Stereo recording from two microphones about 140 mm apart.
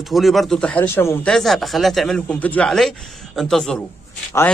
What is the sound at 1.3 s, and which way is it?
A man's voice, centre (ahead or behind).